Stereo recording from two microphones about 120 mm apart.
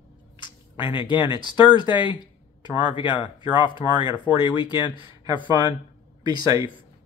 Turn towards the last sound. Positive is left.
turn(degrees=-30)  # may be behind; listen again after turning